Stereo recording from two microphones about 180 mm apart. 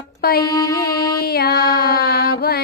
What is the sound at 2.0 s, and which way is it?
Carnatic music, 60° left (ahead or behind).